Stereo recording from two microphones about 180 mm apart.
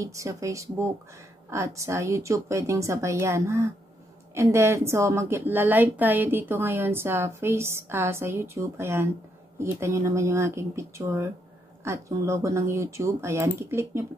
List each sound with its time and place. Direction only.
0.0 s a woman's voice: 15° right (ahead or behind)